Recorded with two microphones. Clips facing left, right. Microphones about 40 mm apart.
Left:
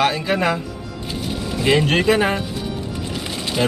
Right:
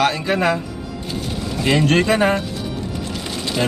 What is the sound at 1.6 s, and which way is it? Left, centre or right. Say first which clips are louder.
Speech: right 1 dB; centre.